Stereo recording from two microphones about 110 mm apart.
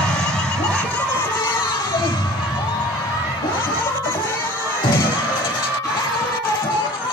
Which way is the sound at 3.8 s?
20° left (ahead or behind).